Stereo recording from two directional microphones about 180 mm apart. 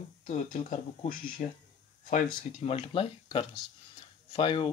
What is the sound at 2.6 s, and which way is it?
Speech, 30° left (ahead or behind).